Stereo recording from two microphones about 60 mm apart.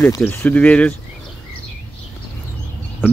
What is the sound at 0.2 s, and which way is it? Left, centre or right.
Speech, left.